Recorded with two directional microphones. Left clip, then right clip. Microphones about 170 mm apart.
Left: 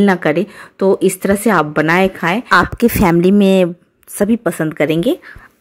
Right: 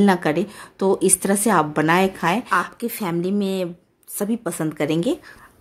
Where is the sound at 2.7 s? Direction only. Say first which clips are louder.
Left 13 dB; 50° left (ahead or behind).